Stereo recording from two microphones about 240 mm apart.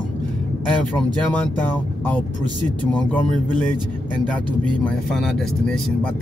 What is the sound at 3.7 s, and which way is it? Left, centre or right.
Speech, centre.